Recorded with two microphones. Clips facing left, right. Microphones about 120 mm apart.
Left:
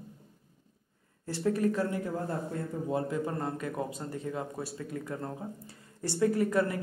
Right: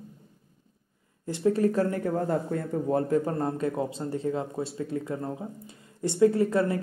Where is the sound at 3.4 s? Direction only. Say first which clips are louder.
Right 6 dB; 25° right (ahead or behind).